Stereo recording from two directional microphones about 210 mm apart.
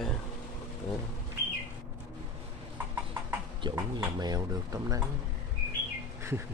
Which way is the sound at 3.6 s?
20° right (ahead or behind).